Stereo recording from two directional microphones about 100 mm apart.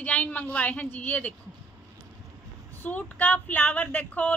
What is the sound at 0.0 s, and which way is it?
A woman's voice, 15° left (ahead or behind).